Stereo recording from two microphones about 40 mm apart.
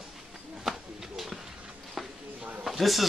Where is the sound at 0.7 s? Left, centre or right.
Centre.